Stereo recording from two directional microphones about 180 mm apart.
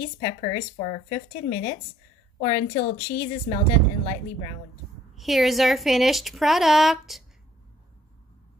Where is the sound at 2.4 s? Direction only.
25° left (ahead or behind).